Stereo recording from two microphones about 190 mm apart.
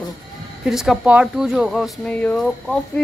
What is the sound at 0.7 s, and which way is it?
Speech, centre (ahead or behind).